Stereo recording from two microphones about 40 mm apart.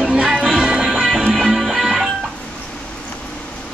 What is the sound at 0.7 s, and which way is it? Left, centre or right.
Music, centre.